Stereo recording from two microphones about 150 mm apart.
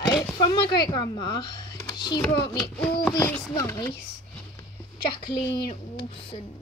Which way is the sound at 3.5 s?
20° left (ahead or behind).